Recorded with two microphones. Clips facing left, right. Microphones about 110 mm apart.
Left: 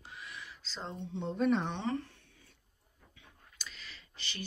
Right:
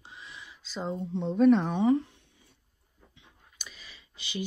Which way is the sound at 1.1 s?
Centre (ahead or behind).